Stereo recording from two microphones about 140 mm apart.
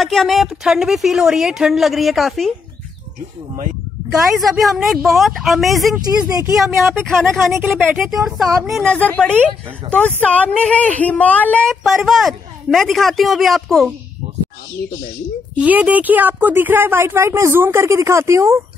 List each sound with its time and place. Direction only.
0.0 s a woman's voice: centre (ahead or behind)
4.4 s a woman's voice: centre (ahead or behind)
6.1 s speech: 25° right (ahead or behind)
6.9 s a woman's voice: centre (ahead or behind)
11.7 s a woman's voice: centre (ahead or behind)
15.5 s a woman's voice: 10° right (ahead or behind)